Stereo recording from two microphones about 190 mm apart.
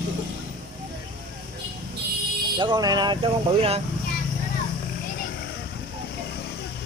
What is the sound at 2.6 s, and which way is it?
Speech, 25° right (ahead or behind).